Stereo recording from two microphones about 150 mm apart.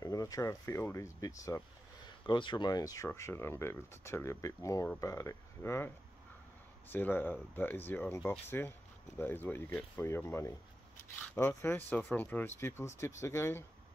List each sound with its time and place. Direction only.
0.0 s speech: 25° left (ahead or behind)
2.2 s speech: 30° left (ahead or behind)